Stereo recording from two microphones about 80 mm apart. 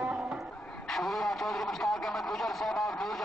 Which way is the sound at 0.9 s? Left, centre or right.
Centre.